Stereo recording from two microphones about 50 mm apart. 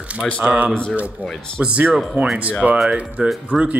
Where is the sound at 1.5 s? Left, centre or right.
Right.